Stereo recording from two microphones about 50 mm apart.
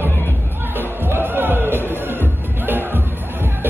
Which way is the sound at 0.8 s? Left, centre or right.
Right.